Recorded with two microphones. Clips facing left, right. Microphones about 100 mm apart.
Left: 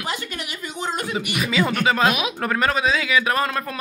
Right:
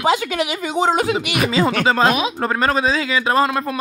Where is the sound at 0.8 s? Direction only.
90° right.